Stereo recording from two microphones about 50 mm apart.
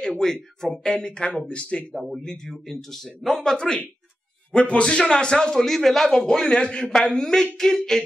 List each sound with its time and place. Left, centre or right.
0.0 s a man's voice: centre
2.0 s a man's voice: centre